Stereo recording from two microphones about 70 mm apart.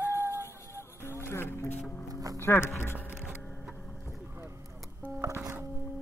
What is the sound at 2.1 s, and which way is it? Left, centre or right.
Music, right.